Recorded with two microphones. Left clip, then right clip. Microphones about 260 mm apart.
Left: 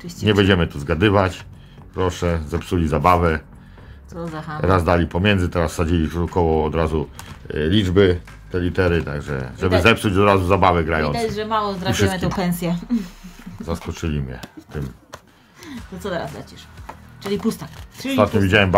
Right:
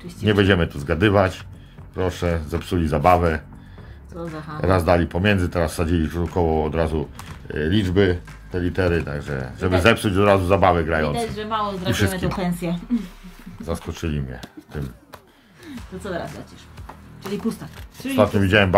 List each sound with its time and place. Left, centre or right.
0.2 s speech: centre
4.6 s speech: centre
11.3 s speech: left
13.7 s speech: centre
17.3 s speech: left
18.1 s speech: centre